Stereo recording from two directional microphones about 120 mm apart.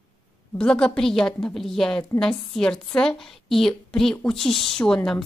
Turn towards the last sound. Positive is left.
turn(degrees=5)  # may be behind; listen again after turning